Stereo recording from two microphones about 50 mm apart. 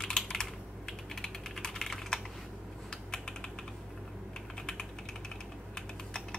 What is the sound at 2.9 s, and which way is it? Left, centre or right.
Typing, centre.